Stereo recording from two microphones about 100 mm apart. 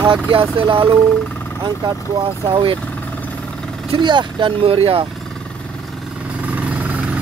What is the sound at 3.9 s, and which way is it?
Speech, 50° right (ahead or behind).